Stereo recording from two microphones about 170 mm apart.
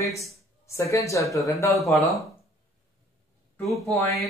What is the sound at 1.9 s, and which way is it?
Speech, centre (ahead or behind).